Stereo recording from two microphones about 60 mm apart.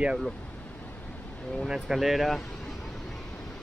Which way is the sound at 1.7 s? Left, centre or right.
Centre.